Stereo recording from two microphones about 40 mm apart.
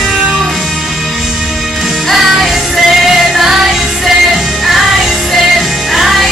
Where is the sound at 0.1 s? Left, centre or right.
Right.